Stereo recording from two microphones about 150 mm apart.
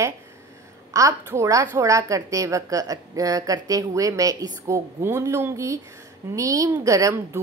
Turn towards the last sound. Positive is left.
turn(degrees=-20)  # may be behind; listen again after turning